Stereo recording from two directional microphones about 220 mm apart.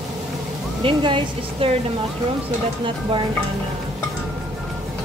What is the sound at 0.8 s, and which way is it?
Speech, 25° right (ahead or behind).